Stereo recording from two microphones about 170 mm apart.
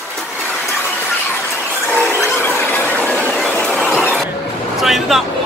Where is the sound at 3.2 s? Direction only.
5° left (ahead or behind).